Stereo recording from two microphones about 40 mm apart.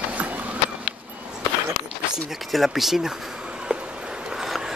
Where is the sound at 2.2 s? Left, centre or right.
Centre.